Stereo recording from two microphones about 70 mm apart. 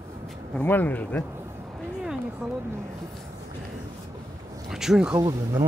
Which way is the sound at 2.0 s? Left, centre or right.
Centre.